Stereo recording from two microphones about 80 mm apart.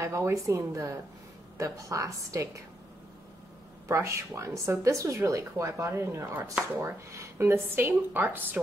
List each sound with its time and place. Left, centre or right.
0.0 s speech: right
3.8 s a woman's voice: right